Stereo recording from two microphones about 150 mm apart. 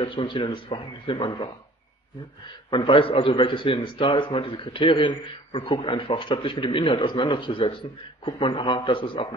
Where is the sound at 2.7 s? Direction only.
35° left (ahead or behind).